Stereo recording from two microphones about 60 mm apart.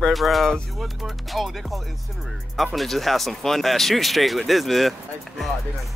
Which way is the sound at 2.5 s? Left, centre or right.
Centre.